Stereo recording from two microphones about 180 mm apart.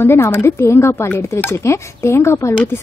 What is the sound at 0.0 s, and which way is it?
A woman's voice, 15° left (ahead or behind).